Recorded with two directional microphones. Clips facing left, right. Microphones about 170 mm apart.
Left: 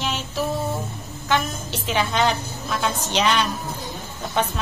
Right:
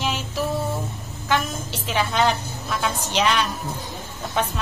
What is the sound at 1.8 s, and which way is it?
A woman's voice, 5° right (ahead or behind).